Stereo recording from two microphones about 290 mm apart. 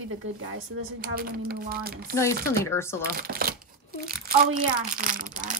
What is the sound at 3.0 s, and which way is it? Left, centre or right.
Speech, right.